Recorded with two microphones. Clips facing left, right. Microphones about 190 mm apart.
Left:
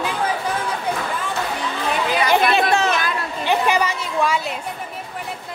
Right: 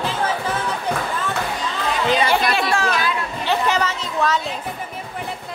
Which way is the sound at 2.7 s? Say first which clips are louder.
Left 1 dB; 20° left (ahead or behind).